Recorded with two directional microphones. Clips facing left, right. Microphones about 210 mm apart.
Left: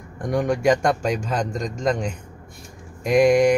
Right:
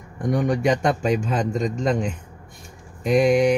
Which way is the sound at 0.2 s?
Centre (ahead or behind).